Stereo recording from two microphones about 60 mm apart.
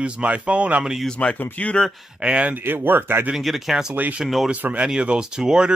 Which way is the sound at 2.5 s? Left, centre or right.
Right.